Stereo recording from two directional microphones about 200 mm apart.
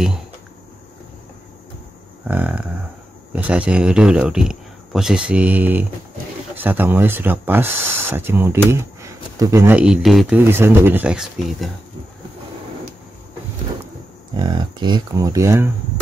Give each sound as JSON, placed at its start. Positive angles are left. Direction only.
{"t": 2.2, "sound": "speech", "side_deg": -10}
{"t": 14.3, "sound": "speech", "side_deg": -20}